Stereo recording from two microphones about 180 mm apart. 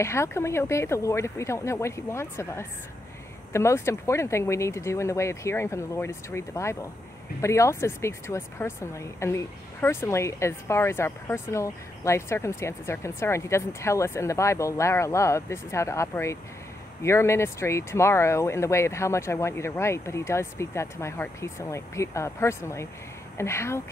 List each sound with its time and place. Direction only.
0.0 s speech: 15° left (ahead or behind)